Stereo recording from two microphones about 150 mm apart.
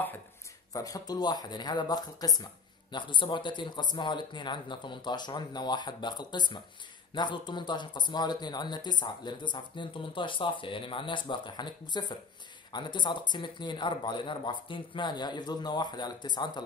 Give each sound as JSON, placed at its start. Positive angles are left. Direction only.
{"t": 0.7, "sound": "speech", "side_deg": 25}